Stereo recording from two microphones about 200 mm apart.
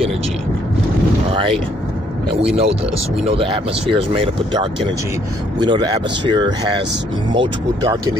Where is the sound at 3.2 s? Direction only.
30° right (ahead or behind).